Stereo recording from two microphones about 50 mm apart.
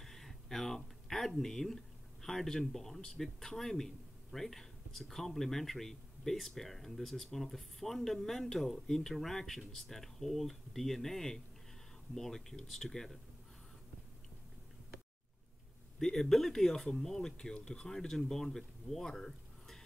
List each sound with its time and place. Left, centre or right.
0.0 s a sound: centre
2.2 s speech: centre
16.0 s speech: centre